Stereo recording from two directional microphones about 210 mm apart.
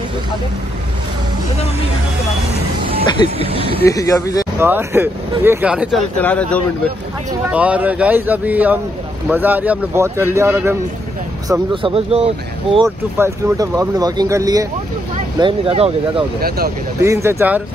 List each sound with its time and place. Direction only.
3.3 s speech: 25° right (ahead or behind)
3.8 s speech: 15° left (ahead or behind)
4.6 s speech: 10° right (ahead or behind)
6.1 s speech: 5° left (ahead or behind)
7.4 s speech: 5° right (ahead or behind)
11.7 s speech: 25° right (ahead or behind)
12.7 s speech: 15° right (ahead or behind)
16.3 s speech: 45° right (ahead or behind)
17.0 s speech: 15° right (ahead or behind)